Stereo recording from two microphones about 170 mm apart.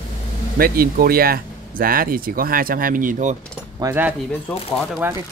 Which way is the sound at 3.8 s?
10° right (ahead or behind).